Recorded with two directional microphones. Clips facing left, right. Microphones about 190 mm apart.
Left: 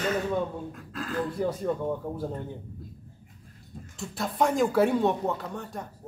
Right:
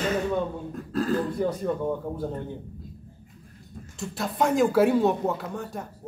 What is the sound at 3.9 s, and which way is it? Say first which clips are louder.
Speech: right 1 dB; centre (ahead or behind).